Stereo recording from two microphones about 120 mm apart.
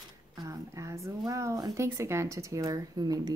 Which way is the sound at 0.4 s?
25° right (ahead or behind).